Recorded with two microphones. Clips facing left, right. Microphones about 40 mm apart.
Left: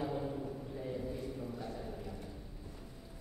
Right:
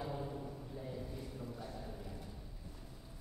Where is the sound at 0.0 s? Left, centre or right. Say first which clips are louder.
Left 5 dB; centre.